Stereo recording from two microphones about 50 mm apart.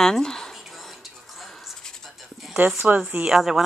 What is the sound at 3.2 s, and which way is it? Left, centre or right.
Speech, centre.